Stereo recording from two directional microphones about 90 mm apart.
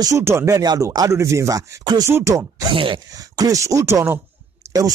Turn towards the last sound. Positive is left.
turn(degrees=-40)  # may be behind; listen again after turning